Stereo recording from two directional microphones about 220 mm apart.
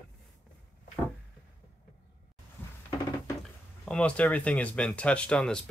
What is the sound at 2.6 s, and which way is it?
Music, 10° left (ahead or behind).